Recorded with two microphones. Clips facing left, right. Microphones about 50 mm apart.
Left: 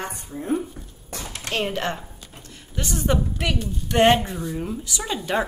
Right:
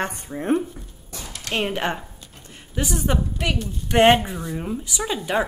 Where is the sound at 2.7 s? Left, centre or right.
Centre.